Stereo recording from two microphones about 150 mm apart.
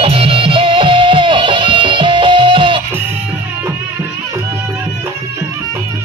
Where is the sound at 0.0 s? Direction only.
40° right (ahead or behind).